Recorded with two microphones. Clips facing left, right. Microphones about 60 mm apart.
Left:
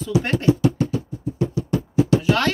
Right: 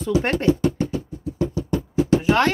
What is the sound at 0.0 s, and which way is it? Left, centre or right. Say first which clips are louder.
Speech: even; right.